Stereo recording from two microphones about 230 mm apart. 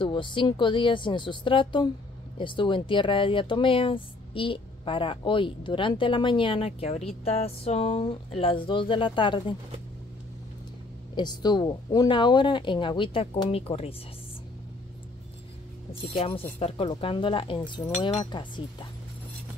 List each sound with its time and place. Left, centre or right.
0.0 s speech: left
11.1 s speech: centre
16.0 s speech: left